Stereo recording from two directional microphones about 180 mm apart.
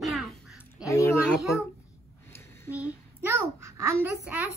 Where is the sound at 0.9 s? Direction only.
15° left (ahead or behind).